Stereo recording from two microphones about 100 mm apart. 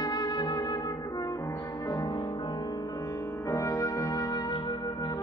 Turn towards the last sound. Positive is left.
turn(degrees=35)  # may be behind; listen again after turning